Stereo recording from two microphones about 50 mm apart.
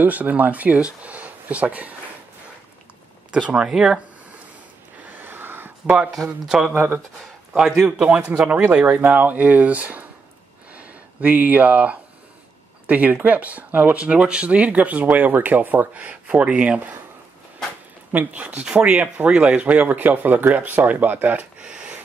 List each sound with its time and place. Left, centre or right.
0.0 s speech: right
1.0 s a sound: right
3.3 s speech: right
5.0 s a sound: right
6.2 s speech: centre
6.7 s speech: right
7.5 s speech: centre
8.3 s speech: right
10.7 s a sound: right
12.8 s speech: right
13.9 s speech: right
18.3 s speech: right
21.5 s a sound: right